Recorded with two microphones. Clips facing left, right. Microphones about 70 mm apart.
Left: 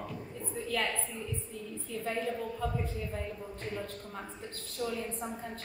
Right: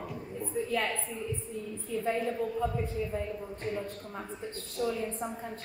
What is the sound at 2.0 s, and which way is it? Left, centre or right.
Speech, centre.